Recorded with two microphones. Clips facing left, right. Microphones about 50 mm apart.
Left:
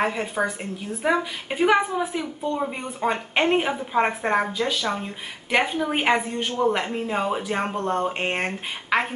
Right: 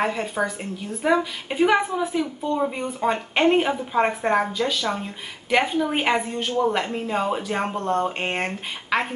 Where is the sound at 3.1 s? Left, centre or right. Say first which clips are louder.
Right 2 dB; centre.